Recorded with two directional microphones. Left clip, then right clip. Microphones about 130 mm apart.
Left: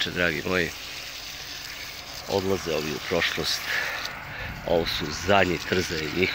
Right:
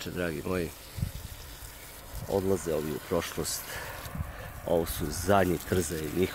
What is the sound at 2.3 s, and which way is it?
Speech, 50° right (ahead or behind).